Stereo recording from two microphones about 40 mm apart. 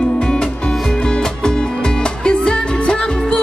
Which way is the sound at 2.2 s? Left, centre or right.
Left.